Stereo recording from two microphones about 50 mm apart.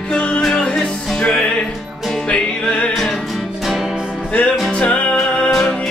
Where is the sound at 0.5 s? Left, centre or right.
Left.